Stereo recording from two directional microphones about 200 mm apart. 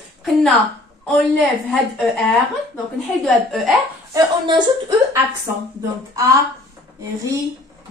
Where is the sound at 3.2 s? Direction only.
Centre (ahead or behind).